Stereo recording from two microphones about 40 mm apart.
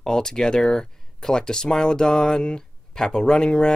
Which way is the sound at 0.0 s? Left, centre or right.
Centre.